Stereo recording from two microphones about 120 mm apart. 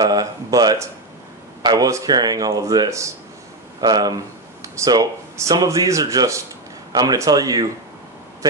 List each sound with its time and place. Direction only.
0.0 s speech: 30° right (ahead or behind)